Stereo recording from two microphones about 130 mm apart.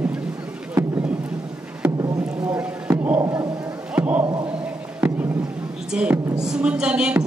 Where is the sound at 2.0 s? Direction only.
30° right (ahead or behind).